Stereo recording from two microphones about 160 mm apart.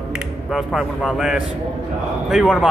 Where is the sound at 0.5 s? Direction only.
Centre (ahead or behind).